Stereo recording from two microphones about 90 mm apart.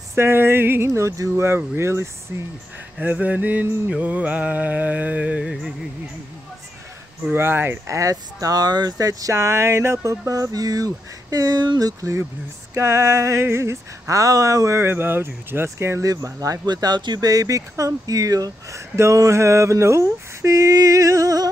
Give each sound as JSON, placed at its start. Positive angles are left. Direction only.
{"t": 0.1, "sound": "speech", "side_deg": -25}
{"t": 3.0, "sound": "music", "side_deg": -20}
{"t": 7.3, "sound": "speech", "side_deg": -25}
{"t": 12.0, "sound": "speech", "side_deg": -35}